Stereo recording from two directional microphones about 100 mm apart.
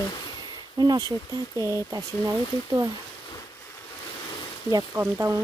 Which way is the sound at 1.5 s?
30° left (ahead or behind).